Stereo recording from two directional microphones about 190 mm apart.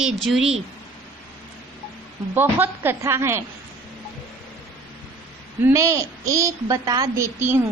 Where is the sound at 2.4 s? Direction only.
10° right (ahead or behind).